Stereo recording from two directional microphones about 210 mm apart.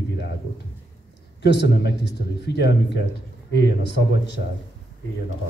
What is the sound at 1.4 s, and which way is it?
Speech, 55° left (ahead or behind).